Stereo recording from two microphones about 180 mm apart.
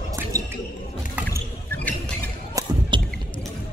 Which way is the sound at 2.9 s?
25° right (ahead or behind).